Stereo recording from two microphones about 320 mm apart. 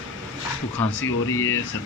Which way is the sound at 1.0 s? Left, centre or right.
Left.